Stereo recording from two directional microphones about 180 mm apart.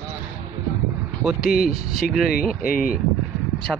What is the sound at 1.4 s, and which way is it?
Speech, 55° left (ahead or behind).